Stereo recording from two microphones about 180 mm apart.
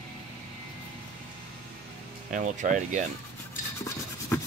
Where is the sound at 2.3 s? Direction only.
45° right (ahead or behind).